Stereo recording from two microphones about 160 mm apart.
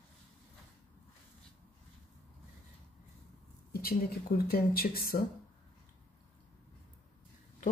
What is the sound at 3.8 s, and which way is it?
Speech, 75° left (ahead or behind).